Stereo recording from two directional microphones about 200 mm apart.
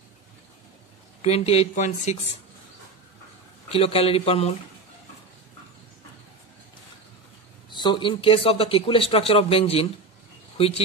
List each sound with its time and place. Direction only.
1.2 s speech: 30° left (ahead or behind)
3.6 s speech: 30° left (ahead or behind)
7.7 s speech: 25° left (ahead or behind)